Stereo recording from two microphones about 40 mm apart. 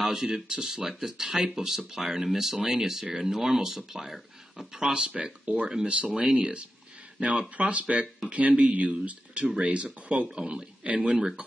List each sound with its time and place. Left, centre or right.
0.0 s speech: centre
0.5 s speech: right
4.8 s speech: right